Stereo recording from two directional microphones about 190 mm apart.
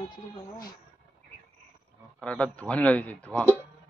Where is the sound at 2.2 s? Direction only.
5° left (ahead or behind).